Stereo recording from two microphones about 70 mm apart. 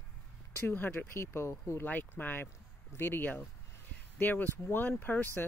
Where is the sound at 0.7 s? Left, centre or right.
Left.